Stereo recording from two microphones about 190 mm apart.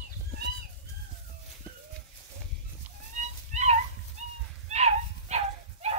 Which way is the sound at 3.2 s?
40° right (ahead or behind).